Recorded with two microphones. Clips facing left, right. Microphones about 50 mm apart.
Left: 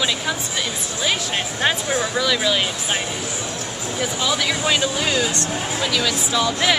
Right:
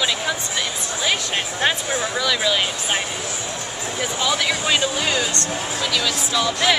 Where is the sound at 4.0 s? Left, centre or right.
Centre.